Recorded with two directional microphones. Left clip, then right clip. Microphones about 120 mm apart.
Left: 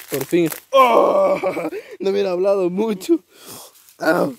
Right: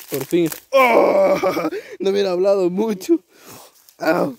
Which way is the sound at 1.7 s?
40° right (ahead or behind).